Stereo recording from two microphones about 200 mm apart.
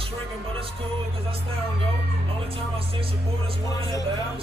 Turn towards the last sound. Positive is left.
turn(degrees=20)  # may be behind; listen again after turning